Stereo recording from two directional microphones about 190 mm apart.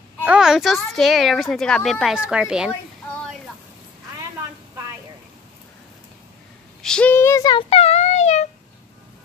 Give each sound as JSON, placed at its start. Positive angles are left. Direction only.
{"t": 0.2, "sound": "a child's voice", "side_deg": -5}
{"t": 6.8, "sound": "speech", "side_deg": 5}
{"t": 7.7, "sound": "a sound", "side_deg": 35}